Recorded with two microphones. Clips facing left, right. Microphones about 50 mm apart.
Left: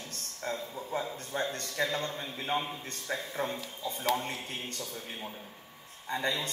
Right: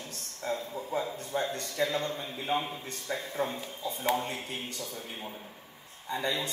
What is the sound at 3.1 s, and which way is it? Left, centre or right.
Speech, left.